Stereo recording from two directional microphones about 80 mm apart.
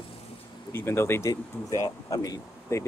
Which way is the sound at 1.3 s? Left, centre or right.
Left.